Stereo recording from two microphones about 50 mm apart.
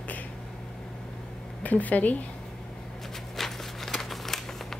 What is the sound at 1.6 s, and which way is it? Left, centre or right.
Speech, left.